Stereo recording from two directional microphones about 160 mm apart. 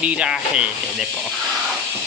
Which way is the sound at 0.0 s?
5° right (ahead or behind).